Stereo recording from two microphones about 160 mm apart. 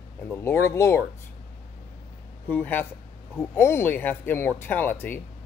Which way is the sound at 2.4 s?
10° left (ahead or behind).